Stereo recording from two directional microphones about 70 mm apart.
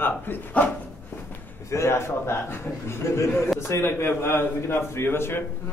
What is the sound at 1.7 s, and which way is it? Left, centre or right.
A man's voice, left.